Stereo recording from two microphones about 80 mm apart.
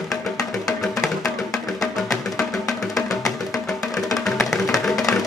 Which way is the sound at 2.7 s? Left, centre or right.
Left.